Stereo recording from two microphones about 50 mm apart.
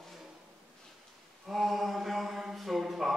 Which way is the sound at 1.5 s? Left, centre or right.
Centre.